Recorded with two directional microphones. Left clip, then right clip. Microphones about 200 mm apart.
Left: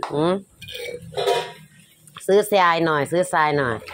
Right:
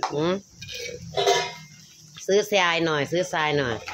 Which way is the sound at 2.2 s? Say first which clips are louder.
Left 5 dB; 20° left (ahead or behind).